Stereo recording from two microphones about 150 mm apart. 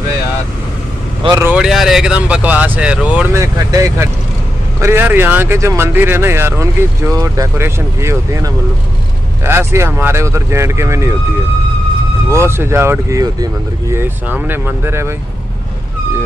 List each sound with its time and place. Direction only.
1.4 s speech: 5° right (ahead or behind)
12.3 s speech: 15° right (ahead or behind)